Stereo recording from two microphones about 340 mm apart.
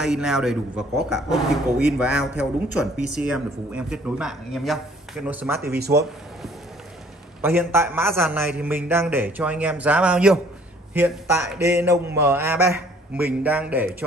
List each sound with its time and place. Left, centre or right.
0.0 s speech: centre
5.6 s speech: right
7.4 s a man's voice: centre